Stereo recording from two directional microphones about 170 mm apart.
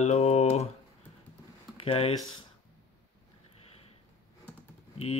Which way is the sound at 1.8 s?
35° left (ahead or behind).